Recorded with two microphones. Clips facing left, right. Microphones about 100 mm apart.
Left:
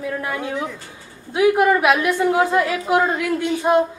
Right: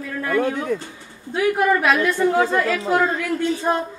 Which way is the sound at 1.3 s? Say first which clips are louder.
Left 3 dB; 15° left (ahead or behind).